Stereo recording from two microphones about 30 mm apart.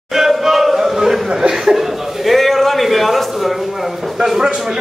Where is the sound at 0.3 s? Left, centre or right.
Centre.